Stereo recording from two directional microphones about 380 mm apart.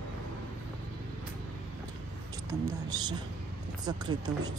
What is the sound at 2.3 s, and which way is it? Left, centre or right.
A woman's voice, centre.